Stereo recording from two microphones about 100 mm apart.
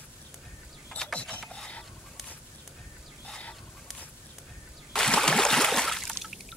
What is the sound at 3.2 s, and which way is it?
Chicken, 10° left (ahead or behind).